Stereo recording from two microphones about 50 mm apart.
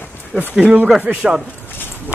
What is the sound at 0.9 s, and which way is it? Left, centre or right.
Speech, centre.